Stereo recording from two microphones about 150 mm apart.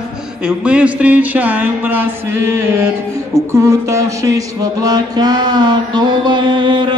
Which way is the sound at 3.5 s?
20° right (ahead or behind).